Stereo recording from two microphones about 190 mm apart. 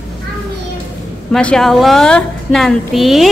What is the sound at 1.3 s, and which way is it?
A woman's voice, 5° left (ahead or behind).